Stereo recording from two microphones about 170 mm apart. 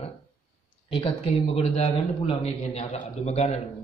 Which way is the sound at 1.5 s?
40° left (ahead or behind).